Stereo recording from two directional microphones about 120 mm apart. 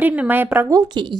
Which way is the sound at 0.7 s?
35° right (ahead or behind).